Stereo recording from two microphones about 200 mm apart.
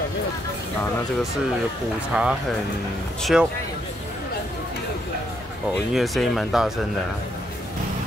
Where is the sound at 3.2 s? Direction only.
Centre (ahead or behind).